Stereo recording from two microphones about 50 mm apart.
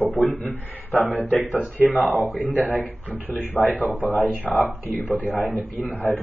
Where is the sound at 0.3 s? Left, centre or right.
Left.